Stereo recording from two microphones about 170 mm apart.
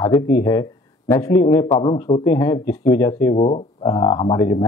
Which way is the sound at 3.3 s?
40° left (ahead or behind).